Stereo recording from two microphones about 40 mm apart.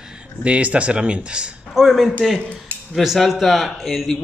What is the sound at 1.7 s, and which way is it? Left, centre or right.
A man's voice, centre.